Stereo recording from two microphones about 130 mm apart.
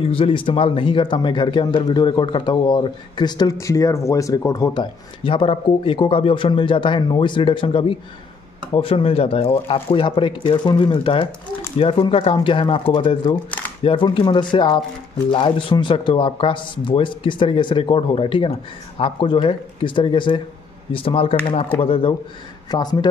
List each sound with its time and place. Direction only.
0.0 s speech: 45° left (ahead or behind); by 4.8 s 25° left (ahead or behind)
5.2 s speech: 40° left (ahead or behind)
22.7 s speech: 30° left (ahead or behind)